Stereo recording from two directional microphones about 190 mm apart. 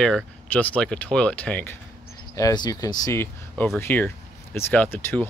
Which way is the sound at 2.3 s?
20° left (ahead or behind).